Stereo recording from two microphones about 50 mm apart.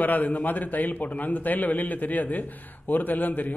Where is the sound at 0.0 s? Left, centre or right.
Left.